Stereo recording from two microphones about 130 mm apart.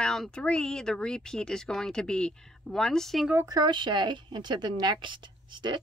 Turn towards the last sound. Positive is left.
turn(degrees=-35)  # may be behind; listen again after turning